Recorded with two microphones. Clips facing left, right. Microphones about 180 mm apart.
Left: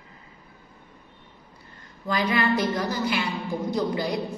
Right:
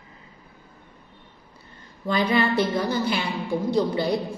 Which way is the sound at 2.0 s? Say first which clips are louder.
Right 2 dB; 25° right (ahead or behind).